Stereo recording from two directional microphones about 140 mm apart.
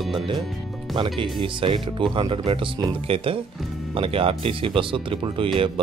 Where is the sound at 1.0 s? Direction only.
35° right (ahead or behind).